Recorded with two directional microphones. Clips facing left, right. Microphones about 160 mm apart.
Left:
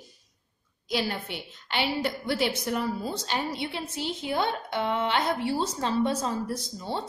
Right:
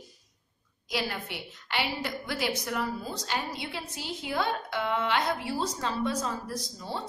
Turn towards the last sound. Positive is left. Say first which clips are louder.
# left 4 dB
turn(degrees=25)  # may be behind; listen again after turning